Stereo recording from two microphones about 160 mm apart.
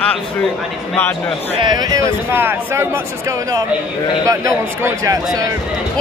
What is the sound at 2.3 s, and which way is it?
Speech, 15° right (ahead or behind).